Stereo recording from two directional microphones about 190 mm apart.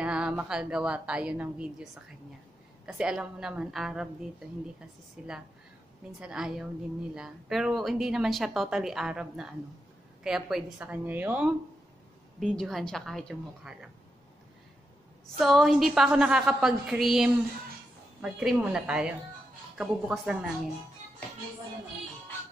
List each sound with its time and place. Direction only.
0.0 s a woman's voice: 5° right (ahead or behind)
2.9 s a woman's voice: 5° right (ahead or behind)
15.3 s a woman's voice: centre (ahead or behind)